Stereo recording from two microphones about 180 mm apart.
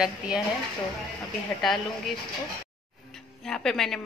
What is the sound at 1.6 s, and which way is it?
Speech, centre (ahead or behind).